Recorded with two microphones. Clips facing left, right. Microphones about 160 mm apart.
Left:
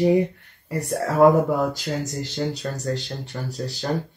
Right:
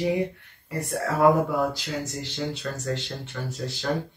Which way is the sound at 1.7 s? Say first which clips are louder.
Left 4 dB; 45° left (ahead or behind).